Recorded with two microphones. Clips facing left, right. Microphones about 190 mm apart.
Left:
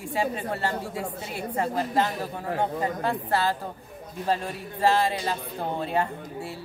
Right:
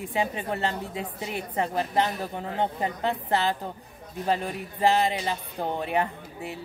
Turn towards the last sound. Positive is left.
turn(degrees=-20)  # may be behind; listen again after turning